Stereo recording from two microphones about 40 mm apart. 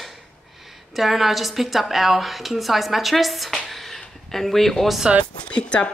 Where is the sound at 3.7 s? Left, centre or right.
Centre.